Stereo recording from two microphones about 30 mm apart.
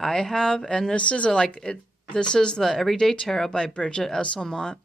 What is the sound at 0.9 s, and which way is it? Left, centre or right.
Speech, left.